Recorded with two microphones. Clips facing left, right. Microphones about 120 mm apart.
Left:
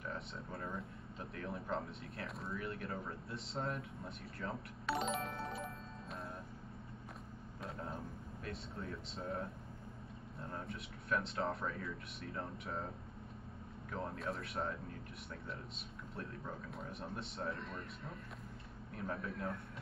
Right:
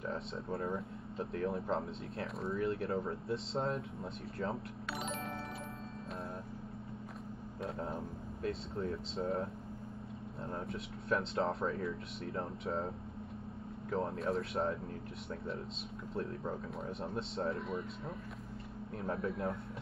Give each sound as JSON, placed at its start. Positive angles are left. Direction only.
{"t": 0.1, "sound": "speech", "side_deg": -30}
{"t": 7.8, "sound": "speech", "side_deg": -25}
{"t": 11.1, "sound": "speech", "side_deg": -30}
{"t": 17.0, "sound": "speech", "side_deg": -25}
{"t": 17.6, "sound": "speech", "side_deg": -5}
{"t": 18.9, "sound": "speech", "side_deg": -30}